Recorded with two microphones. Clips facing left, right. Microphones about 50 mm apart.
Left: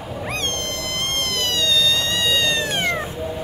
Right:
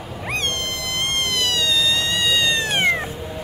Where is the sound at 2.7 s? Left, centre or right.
Centre.